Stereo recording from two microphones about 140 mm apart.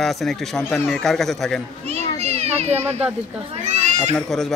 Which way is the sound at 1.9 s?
50° right (ahead or behind).